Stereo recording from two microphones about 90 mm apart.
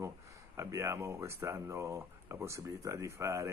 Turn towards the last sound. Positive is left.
turn(degrees=-35)  # may be behind; listen again after turning